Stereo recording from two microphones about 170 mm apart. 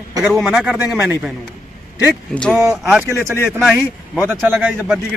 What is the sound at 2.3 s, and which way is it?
Speech, 5° left (ahead or behind).